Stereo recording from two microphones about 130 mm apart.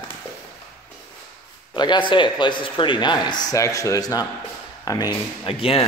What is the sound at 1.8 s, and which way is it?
Speech, 35° left (ahead or behind).